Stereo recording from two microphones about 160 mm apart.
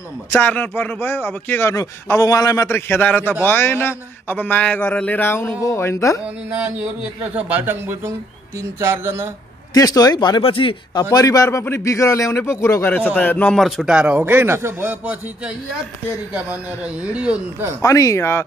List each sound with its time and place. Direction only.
0.4 s a man's voice: 10° left (ahead or behind)
6.2 s speech: 10° right (ahead or behind)
9.8 s speech: 25° left (ahead or behind)
11.1 s a man's voice: 20° left (ahead or behind); by 17.7 s 10° right (ahead or behind)
17.8 s speech: 20° left (ahead or behind)